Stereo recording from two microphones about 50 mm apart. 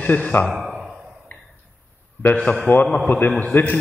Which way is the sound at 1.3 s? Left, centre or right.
Left.